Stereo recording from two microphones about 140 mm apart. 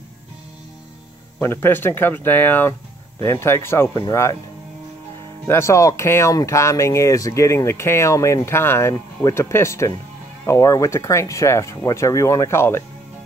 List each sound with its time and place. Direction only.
1.4 s speech: 15° left (ahead or behind)
5.5 s speech: 20° left (ahead or behind)